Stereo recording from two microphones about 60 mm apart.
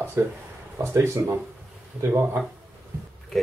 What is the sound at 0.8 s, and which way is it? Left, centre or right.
Speech, right.